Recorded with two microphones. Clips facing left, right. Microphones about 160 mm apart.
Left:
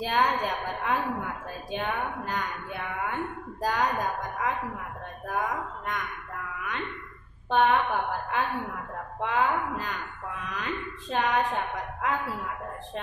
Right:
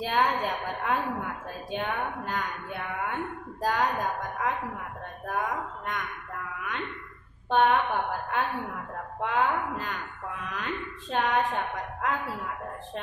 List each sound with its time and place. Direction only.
0.0 s a woman's voice: centre (ahead or behind)
7.4 s a woman's voice: centre (ahead or behind)
9.2 s a woman's voice: centre (ahead or behind)